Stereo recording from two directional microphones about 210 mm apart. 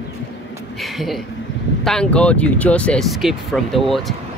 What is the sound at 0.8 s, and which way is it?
Speech, centre (ahead or behind).